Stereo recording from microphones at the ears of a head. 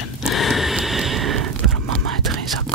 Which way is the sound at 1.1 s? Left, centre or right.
Right.